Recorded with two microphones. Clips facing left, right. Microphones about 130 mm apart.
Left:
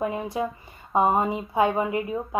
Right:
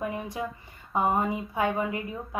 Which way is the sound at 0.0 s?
20° left (ahead or behind).